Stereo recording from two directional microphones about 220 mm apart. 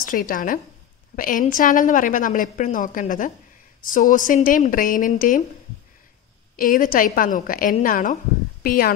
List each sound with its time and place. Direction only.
0.0 s a woman's voice: 40° left (ahead or behind)
6.5 s a woman's voice: 40° left (ahead or behind)